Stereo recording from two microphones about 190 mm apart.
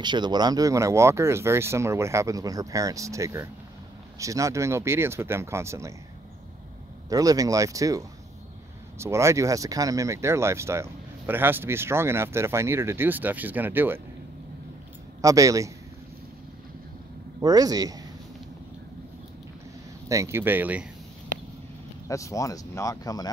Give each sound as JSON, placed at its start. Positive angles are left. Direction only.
{"t": 0.0, "sound": "speech", "side_deg": -25}
{"t": 7.1, "sound": "speech", "side_deg": -20}
{"t": 15.2, "sound": "speech", "side_deg": -15}
{"t": 17.4, "sound": "speech", "side_deg": -20}
{"t": 20.1, "sound": "speech", "side_deg": -15}
{"t": 22.0, "sound": "speech", "side_deg": 15}